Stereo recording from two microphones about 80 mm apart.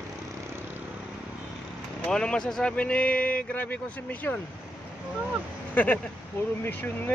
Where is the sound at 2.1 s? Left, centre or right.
Centre.